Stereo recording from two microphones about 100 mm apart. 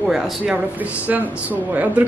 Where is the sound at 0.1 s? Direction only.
Centre (ahead or behind).